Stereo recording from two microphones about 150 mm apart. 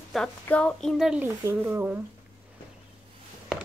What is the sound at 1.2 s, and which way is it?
Speech, 15° right (ahead or behind).